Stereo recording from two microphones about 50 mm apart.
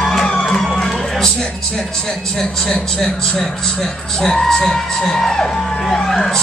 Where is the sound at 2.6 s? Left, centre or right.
Centre.